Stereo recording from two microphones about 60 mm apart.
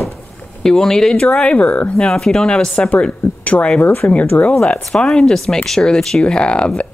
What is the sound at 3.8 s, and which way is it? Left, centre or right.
Speech, left.